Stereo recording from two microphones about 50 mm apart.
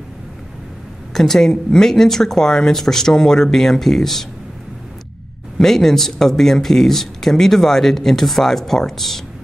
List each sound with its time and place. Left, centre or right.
1.1 s speech: centre
5.6 s speech: centre